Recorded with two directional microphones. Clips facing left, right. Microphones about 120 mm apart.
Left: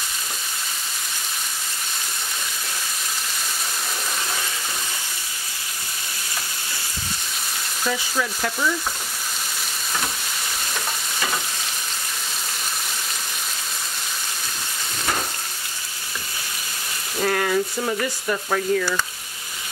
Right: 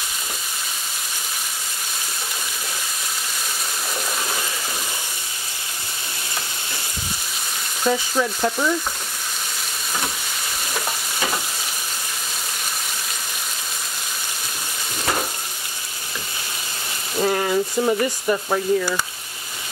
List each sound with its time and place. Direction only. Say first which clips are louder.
7.8 s stir: right 5 dB; 25° right (ahead or behind)
17.2 s speech: right 1 dB; 15° right (ahead or behind)